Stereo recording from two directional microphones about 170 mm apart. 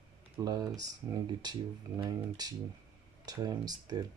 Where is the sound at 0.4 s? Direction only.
20° right (ahead or behind).